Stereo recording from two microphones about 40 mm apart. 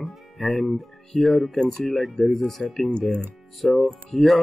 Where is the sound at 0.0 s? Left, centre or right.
Centre.